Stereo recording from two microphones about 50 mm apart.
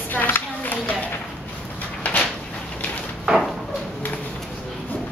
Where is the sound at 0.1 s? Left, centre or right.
Left.